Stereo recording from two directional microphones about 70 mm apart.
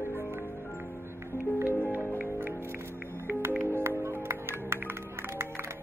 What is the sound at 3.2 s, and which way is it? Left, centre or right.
Music, right.